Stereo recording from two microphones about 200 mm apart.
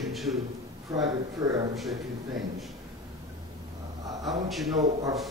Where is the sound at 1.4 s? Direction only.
15° right (ahead or behind).